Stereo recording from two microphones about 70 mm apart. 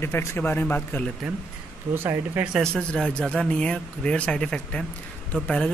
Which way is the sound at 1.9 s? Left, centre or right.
Right.